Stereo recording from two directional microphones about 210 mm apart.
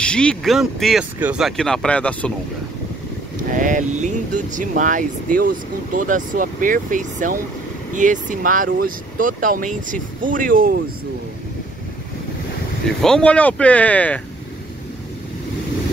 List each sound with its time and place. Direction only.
0.0 s speech: 5° left (ahead or behind)
3.3 s speech: 40° right (ahead or behind)
12.8 s speech: 5° left (ahead or behind)